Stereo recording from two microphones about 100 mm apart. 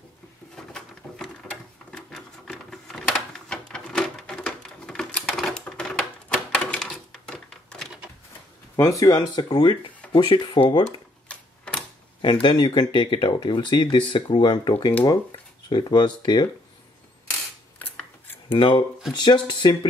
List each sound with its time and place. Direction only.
0.7 s a sound: 5° left (ahead or behind)
9.0 s speech: 45° left (ahead or behind)
11.2 s tick-tock: 10° left (ahead or behind)
12.2 s speech: 50° left (ahead or behind)
18.5 s speech: 55° left (ahead or behind)